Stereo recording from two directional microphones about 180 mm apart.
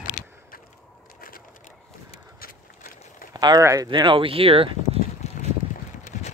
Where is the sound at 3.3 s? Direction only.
20° right (ahead or behind).